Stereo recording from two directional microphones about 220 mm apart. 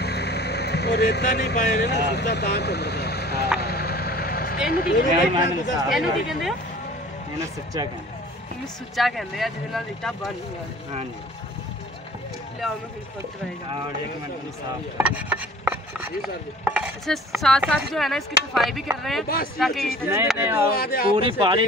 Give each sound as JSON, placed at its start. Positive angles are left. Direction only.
{"t": 0.0, "sound": "speech", "side_deg": 50}
{"t": 3.6, "sound": "vehicle", "side_deg": 45}
{"t": 4.6, "sound": "speech", "side_deg": 45}
{"t": 5.9, "sound": "speech", "side_deg": 0}
{"t": 8.9, "sound": "speech", "side_deg": 0}
{"t": 15.0, "sound": "chopping", "side_deg": -5}
{"t": 17.4, "sound": "speech", "side_deg": 0}
{"t": 19.2, "sound": "speech", "side_deg": 45}
{"t": 19.6, "sound": "speech", "side_deg": 0}
{"t": 20.1, "sound": "speech", "side_deg": -10}
{"t": 20.7, "sound": "speech", "side_deg": 45}
{"t": 21.1, "sound": "speech", "side_deg": -25}